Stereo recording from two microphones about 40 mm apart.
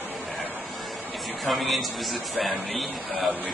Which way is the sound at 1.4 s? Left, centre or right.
Centre.